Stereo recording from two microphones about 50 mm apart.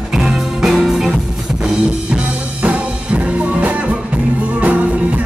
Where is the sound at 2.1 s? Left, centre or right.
Right.